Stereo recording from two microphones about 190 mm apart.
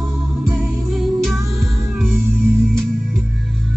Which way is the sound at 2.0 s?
10° right (ahead or behind).